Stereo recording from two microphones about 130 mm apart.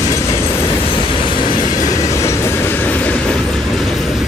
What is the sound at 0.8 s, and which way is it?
Train, 40° left (ahead or behind).